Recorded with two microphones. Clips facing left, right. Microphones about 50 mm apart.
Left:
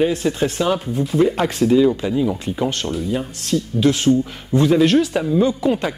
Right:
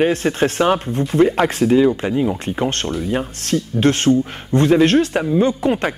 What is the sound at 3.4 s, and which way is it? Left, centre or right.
Speech, right.